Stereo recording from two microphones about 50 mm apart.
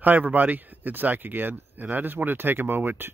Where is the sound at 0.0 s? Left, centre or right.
Right.